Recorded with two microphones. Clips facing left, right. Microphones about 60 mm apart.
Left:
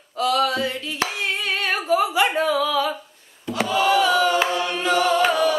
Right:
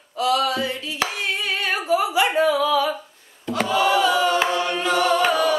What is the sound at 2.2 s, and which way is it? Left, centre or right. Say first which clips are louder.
Singing: right 2 dB; centre.